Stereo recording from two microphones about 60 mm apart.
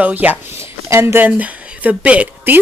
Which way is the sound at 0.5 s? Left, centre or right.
Right.